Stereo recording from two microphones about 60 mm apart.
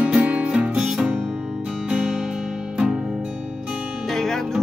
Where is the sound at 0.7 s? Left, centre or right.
Centre.